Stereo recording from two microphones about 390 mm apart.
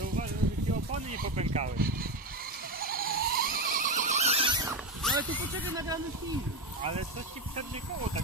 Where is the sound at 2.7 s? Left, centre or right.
Right; by 5.1 s centre.